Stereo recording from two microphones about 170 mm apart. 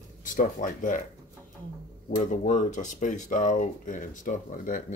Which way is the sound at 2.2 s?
45° left (ahead or behind).